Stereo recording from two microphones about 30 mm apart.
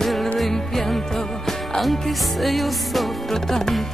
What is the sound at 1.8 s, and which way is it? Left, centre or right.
Music, centre.